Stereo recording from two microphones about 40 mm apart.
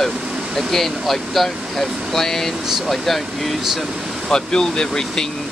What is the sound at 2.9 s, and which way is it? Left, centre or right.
Speech, centre.